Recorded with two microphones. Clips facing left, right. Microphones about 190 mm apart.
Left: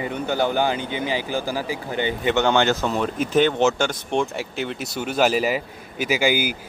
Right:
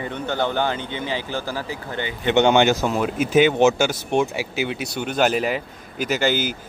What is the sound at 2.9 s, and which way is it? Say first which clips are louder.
Speech: right 2 dB; 5° right (ahead or behind).